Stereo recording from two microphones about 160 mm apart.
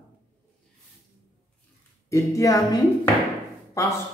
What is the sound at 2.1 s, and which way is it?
Speech, 20° left (ahead or behind).